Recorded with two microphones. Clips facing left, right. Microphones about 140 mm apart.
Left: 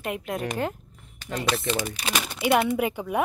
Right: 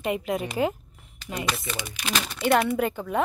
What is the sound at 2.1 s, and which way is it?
Speech, 10° left (ahead or behind).